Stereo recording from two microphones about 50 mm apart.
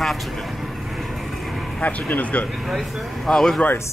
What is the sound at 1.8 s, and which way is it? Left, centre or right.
Speech, left.